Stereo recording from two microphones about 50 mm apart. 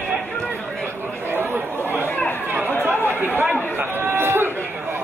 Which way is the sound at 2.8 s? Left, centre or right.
Right.